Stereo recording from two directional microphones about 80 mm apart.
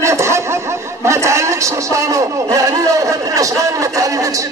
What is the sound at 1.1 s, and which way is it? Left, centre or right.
A man's voice, right.